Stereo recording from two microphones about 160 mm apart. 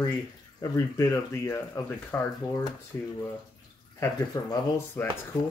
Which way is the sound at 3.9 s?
25° left (ahead or behind).